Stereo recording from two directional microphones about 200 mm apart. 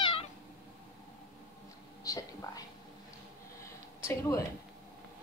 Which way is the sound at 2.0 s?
20° left (ahead or behind).